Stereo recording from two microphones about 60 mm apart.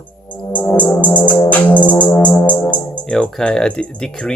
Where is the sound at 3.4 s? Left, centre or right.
Centre.